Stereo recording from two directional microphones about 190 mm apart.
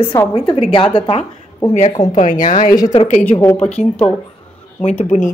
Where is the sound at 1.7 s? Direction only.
40° left (ahead or behind).